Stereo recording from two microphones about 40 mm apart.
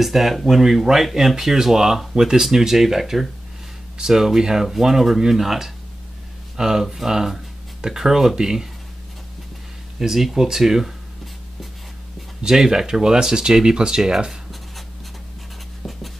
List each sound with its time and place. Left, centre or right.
0.0 s speech: centre
9.9 s speech: centre
12.4 s speech: centre